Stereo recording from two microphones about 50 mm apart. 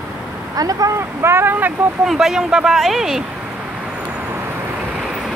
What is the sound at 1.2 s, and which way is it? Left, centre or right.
Speech, right.